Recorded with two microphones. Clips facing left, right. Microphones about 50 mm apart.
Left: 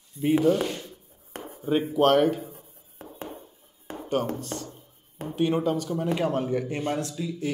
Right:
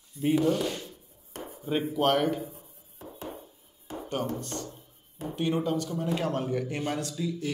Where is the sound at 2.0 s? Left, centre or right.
Centre.